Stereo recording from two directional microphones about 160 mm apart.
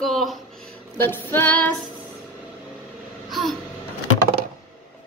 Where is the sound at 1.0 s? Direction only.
10° left (ahead or behind).